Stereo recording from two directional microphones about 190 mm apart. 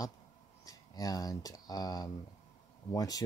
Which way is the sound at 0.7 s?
20° left (ahead or behind).